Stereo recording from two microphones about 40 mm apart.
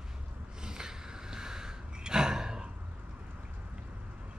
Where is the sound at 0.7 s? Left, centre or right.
Centre.